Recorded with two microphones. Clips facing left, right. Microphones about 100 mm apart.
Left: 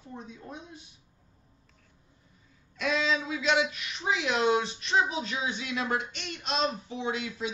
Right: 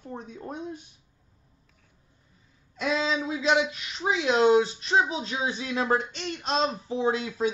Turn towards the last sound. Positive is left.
turn(degrees=-40)  # may be behind; listen again after turning